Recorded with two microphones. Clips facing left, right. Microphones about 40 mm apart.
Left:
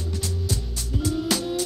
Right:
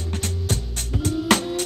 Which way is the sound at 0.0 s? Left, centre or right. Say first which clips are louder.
Right 1 dB; right.